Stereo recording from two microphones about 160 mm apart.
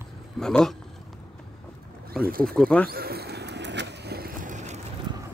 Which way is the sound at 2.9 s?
75° right (ahead or behind).